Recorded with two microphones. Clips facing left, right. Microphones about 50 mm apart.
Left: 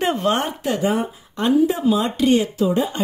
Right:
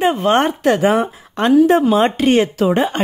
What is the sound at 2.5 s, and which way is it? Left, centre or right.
Speech, right.